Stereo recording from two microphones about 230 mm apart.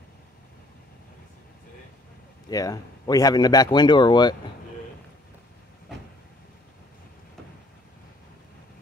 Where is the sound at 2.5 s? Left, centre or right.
Centre.